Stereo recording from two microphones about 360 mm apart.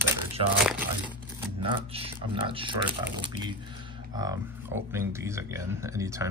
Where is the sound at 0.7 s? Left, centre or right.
Centre.